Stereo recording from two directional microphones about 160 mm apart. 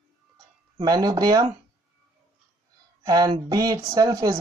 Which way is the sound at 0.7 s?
25° right (ahead or behind).